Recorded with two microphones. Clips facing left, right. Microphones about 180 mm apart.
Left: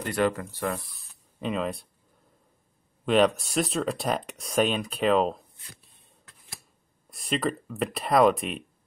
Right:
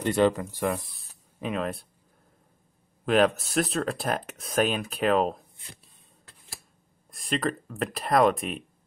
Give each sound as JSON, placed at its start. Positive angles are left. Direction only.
{"t": 0.0, "sound": "speech", "side_deg": -20}
{"t": 1.4, "sound": "speech", "side_deg": 0}
{"t": 3.1, "sound": "speech", "side_deg": 0}
{"t": 7.1, "sound": "speech", "side_deg": 0}